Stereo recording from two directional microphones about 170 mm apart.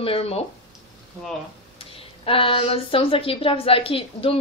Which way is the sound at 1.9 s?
35° left (ahead or behind).